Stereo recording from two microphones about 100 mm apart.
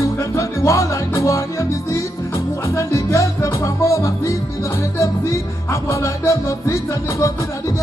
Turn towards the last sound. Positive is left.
turn(degrees=30)  # may be behind; listen again after turning